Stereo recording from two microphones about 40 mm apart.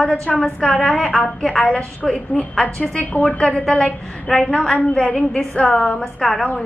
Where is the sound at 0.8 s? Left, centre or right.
Centre.